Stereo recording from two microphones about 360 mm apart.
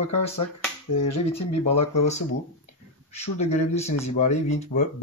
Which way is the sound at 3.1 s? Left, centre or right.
Centre.